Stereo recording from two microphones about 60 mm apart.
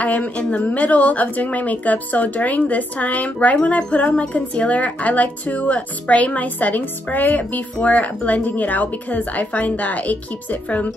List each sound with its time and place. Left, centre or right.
0.0 s speech: left